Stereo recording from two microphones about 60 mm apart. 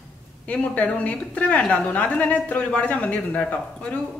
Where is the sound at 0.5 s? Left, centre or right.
Left.